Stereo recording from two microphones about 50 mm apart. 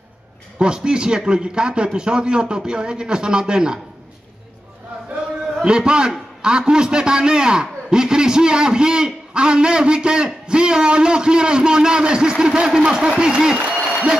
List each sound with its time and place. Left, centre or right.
0.6 s a man's voice: centre
5.6 s a man's voice: centre